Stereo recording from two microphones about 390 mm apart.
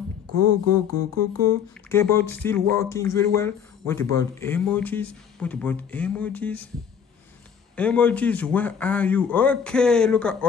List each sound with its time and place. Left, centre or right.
0.3 s a sound: right
1.9 s speech: centre
7.7 s speech: centre